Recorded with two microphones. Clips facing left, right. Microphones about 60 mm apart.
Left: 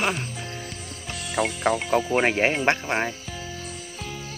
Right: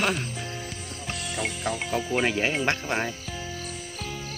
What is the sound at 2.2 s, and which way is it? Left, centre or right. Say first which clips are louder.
Speech: left 4 dB; left.